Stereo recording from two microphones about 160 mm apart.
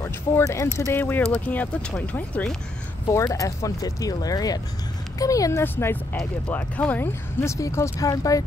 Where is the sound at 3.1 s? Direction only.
20° left (ahead or behind).